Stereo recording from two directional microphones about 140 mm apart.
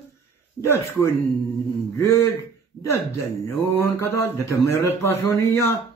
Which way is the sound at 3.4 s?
15° left (ahead or behind).